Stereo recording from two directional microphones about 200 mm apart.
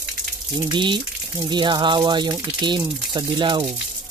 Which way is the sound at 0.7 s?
25° right (ahead or behind).